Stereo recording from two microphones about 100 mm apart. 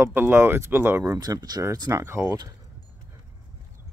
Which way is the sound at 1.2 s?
40° right (ahead or behind).